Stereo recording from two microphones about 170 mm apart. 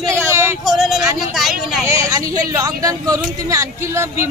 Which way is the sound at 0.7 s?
5° right (ahead or behind).